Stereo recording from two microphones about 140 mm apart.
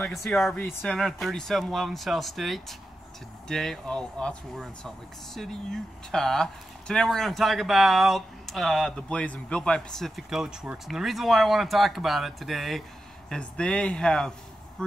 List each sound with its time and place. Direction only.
0.0 s speech: centre (ahead or behind)